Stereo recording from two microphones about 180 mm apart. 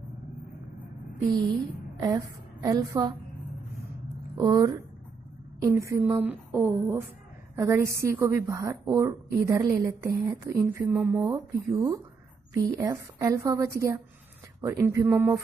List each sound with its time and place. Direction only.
2.0 s a woman's voice: 20° right (ahead or behind)
4.4 s a woman's voice: 20° right (ahead or behind)
11.0 s speech: centre (ahead or behind)
11.2 s a woman's voice: 15° right (ahead or behind)